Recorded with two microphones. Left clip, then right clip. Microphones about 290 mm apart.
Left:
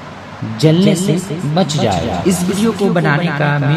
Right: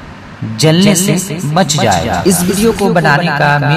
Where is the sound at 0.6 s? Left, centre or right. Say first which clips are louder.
Right 3 dB; right.